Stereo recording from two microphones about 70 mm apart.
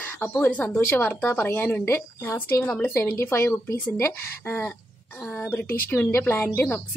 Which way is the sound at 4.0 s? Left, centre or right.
Left.